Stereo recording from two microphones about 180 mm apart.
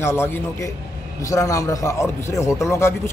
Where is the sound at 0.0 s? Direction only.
15° left (ahead or behind).